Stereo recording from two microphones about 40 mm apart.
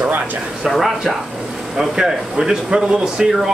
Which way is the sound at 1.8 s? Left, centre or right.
Centre.